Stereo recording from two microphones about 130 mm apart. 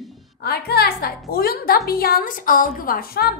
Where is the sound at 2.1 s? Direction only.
90° left.